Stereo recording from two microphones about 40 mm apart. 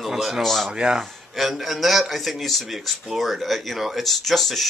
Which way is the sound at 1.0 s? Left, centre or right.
Centre.